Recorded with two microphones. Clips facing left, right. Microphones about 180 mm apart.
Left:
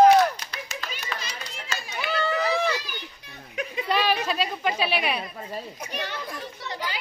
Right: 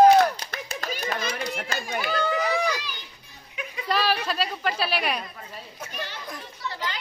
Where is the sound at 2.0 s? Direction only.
Centre (ahead or behind).